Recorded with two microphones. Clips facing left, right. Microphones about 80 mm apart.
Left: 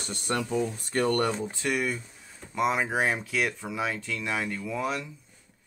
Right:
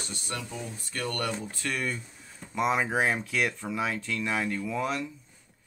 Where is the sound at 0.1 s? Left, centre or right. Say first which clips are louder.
Left 11 dB; left; by 2.0 s centre.